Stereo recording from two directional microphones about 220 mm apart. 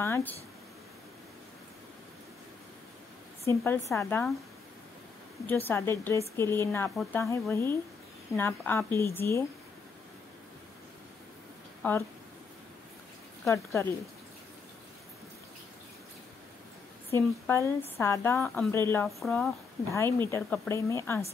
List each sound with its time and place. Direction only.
0.0 s a woman's voice: 10° left (ahead or behind)
3.4 s a woman's voice: 10° left (ahead or behind)
5.5 s a woman's voice: 10° left (ahead or behind)
11.8 s a woman's voice: 5° left (ahead or behind)
13.5 s a woman's voice: 15° left (ahead or behind)
17.1 s a woman's voice: 10° left (ahead or behind)
19.0 s speech: centre (ahead or behind)
19.9 s a woman's voice: 10° left (ahead or behind)